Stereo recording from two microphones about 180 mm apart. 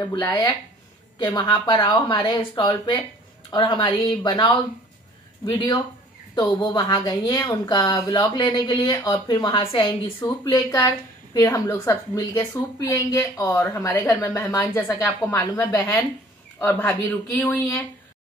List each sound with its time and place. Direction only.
0.0 s speech: 20° left (ahead or behind)